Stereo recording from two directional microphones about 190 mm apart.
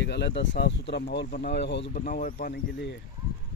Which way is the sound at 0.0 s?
65° left (ahead or behind).